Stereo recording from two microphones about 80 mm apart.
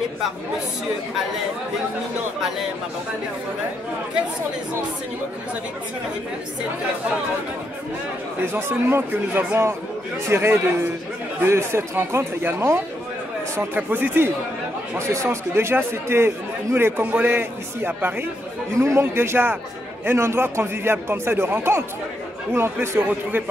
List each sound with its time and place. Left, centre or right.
8.5 s speech: right
13.6 s speech: right
18.8 s speech: right